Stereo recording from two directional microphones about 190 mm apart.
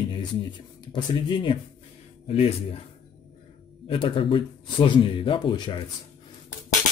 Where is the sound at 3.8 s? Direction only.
30° left (ahead or behind).